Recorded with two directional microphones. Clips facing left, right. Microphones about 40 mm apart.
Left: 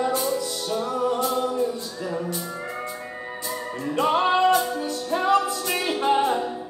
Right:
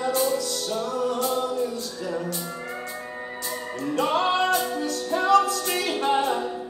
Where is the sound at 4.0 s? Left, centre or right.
Centre.